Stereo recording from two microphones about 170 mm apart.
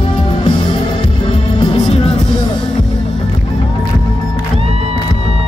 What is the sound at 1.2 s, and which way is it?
Music, 30° left (ahead or behind).